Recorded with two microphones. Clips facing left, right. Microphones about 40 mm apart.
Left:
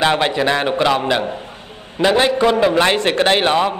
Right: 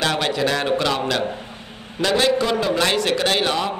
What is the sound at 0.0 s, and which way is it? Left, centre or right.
A man's voice, left.